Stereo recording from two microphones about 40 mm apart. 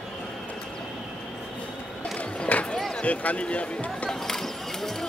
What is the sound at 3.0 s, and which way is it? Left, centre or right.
Speech, left.